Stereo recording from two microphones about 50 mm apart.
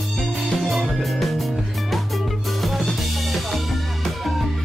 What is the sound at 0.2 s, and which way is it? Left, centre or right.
Music, centre.